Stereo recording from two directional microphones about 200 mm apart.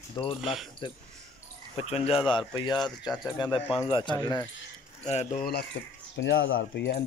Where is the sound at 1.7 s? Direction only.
30° left (ahead or behind).